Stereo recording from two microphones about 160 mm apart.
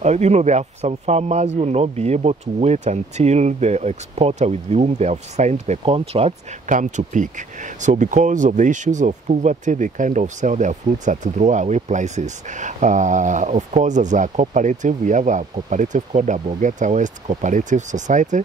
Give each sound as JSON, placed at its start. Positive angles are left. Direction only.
{"t": 0.0, "sound": "speech", "side_deg": -45}
{"t": 6.7, "sound": "speech", "side_deg": -50}